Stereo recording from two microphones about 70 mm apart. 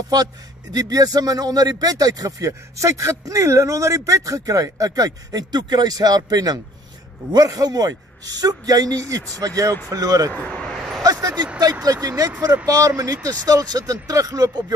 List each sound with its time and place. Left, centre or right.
0.7 s speech: right
10.3 s speech: centre
10.6 s a sound: centre
11.0 s vehicle: right
11.8 s speech: right